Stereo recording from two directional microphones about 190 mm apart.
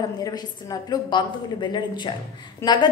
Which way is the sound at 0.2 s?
20° left (ahead or behind).